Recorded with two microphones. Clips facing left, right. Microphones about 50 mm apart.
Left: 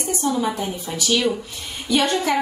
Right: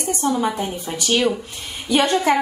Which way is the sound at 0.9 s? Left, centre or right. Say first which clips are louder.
Right 1 dB; right.